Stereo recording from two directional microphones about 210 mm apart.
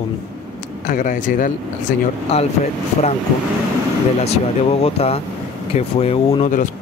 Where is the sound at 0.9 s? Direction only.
40° left (ahead or behind).